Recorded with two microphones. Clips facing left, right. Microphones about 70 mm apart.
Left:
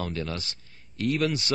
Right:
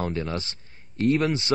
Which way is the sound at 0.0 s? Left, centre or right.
Right.